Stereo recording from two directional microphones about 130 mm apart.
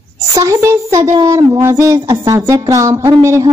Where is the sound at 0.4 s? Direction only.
25° right (ahead or behind).